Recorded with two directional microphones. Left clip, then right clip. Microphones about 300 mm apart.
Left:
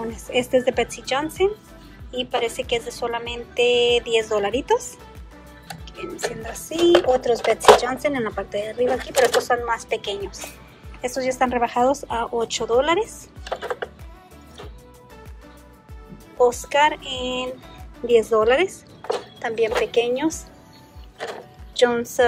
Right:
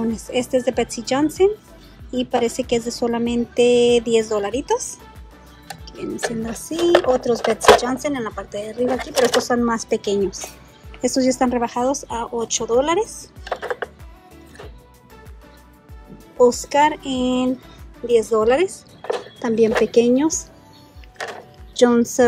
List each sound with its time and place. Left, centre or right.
0.0 s a woman's voice: centre
5.9 s a woman's voice: centre
13.2 s computer keyboard: centre
16.3 s a woman's voice: centre
21.2 s music: centre
21.7 s a woman's voice: centre